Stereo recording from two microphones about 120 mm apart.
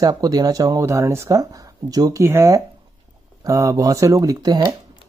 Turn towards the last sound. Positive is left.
turn(degrees=-30)  # may be behind; listen again after turning